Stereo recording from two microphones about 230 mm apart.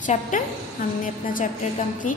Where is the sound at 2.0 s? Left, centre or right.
Left.